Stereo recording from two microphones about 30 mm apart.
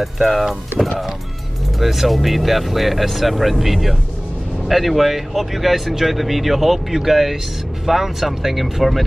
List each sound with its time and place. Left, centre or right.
0.0 s speech: centre
0.8 s speech: right
1.8 s speech: centre